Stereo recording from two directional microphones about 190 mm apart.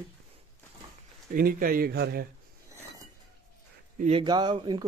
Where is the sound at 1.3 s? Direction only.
50° right (ahead or behind).